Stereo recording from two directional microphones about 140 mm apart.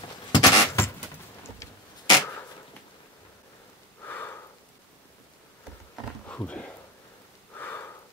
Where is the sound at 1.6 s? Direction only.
25° left (ahead or behind).